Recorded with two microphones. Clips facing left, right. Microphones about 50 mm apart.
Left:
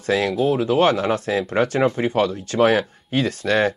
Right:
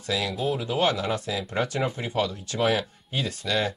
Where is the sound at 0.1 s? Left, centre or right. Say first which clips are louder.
Left 8 dB; left.